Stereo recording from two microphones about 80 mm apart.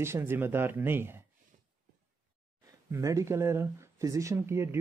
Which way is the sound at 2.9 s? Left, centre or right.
Right.